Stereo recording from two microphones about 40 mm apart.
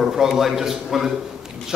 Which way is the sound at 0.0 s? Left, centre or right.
Centre.